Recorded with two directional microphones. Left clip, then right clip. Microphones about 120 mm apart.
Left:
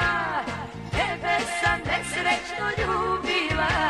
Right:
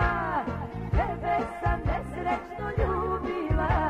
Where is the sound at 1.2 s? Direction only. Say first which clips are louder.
Left 5 dB; 40° right (ahead or behind).